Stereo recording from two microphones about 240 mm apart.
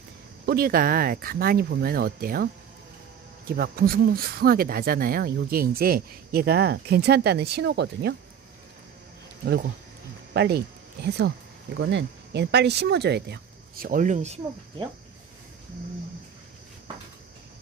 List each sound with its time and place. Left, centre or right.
0.5 s speech: right
10.3 s speech: right